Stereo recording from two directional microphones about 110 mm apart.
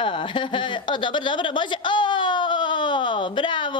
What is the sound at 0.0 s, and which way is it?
A woman's voice, 50° left (ahead or behind).